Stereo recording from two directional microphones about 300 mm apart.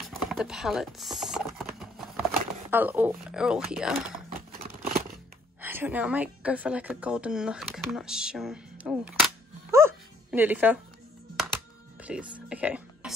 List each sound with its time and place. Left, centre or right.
0.0 s speech: centre
1.8 s a sound: centre
4.5 s scissors: right
5.6 s a woman's voice: centre
12.0 s whispering: centre